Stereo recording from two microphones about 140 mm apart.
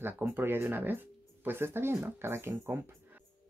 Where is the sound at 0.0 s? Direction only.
15° right (ahead or behind).